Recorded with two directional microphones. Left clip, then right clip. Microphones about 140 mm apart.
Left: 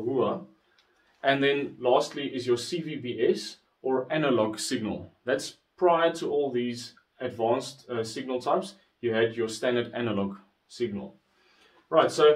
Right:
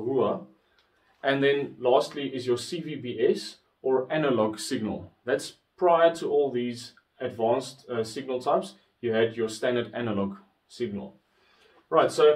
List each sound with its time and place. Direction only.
1.2 s a man's voice: 25° left (ahead or behind)
1.8 s speech: 10° left (ahead or behind)